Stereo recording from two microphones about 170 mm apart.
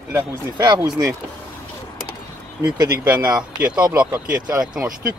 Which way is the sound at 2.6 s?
15° right (ahead or behind).